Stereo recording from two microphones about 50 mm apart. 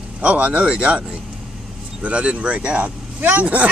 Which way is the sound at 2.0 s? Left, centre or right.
Right.